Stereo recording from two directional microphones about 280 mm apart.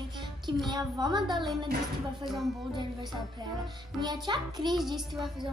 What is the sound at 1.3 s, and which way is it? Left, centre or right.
Speech, centre.